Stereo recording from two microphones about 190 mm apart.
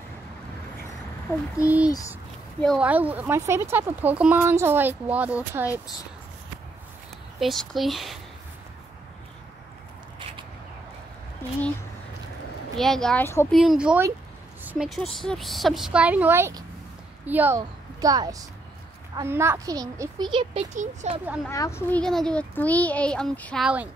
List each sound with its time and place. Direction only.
1.3 s a woman's voice: 15° left (ahead or behind)
2.6 s a woman's voice: centre (ahead or behind)
2.9 s speech: 10° right (ahead or behind)
5.7 s speech: 20° left (ahead or behind)
7.3 s a woman's voice: centre (ahead or behind)
12.7 s a woman's voice: centre (ahead or behind)
13.5 s a woman's voice: centre (ahead or behind); by 20.6 s 25° right (ahead or behind)
20.7 s speech: 40° right (ahead or behind)
21.5 s a woman's voice: 15° left (ahead or behind)
22.0 s a woman's voice: 5° left (ahead or behind)